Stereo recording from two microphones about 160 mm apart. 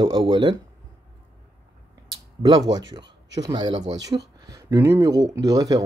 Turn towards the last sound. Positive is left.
turn(degrees=-20)  # may be behind; listen again after turning